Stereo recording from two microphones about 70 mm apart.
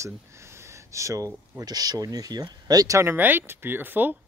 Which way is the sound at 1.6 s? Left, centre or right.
Right.